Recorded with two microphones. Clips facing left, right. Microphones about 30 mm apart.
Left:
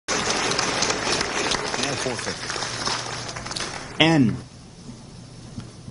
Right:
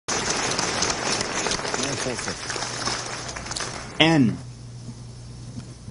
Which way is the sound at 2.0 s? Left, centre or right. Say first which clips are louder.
Left 1 dB; centre.